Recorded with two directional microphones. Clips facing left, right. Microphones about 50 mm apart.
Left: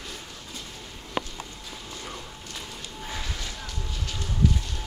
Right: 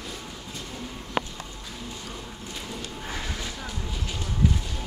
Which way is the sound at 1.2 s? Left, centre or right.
Right.